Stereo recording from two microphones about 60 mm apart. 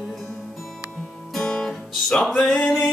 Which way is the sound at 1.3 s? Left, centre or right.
Centre.